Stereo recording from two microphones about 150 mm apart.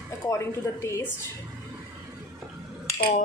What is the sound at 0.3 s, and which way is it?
Speech, 20° left (ahead or behind).